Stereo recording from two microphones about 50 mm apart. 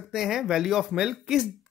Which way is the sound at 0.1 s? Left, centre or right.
Centre.